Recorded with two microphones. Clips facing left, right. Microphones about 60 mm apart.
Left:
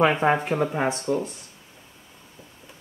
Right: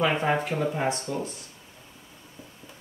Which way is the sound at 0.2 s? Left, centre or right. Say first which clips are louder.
Left 4 dB; left.